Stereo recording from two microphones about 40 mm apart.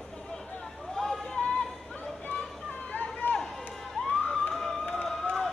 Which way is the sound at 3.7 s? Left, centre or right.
Centre.